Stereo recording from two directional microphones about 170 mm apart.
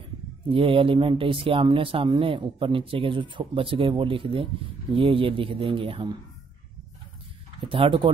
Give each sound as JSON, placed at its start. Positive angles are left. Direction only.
{"t": 0.5, "sound": "a man's voice", "side_deg": -30}
{"t": 7.6, "sound": "a man's voice", "side_deg": -30}